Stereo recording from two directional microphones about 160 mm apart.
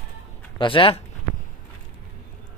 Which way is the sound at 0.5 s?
30° left (ahead or behind).